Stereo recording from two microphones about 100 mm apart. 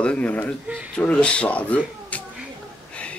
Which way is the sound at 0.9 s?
10° left (ahead or behind).